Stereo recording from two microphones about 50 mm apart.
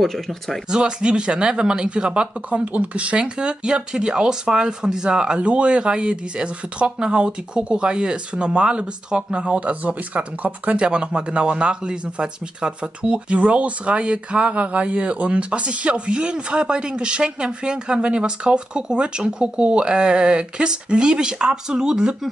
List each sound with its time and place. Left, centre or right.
0.0 s speech: centre
0.7 s speech: centre